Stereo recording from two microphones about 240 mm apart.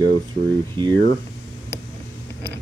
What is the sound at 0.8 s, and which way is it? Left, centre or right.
Speech, centre.